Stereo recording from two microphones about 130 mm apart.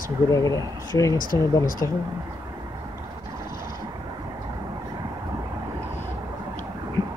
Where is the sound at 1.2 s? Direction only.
90° left.